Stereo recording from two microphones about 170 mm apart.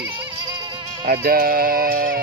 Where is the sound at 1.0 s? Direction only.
60° right (ahead or behind).